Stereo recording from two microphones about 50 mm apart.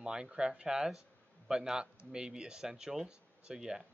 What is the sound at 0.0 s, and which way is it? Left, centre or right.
Speech, centre.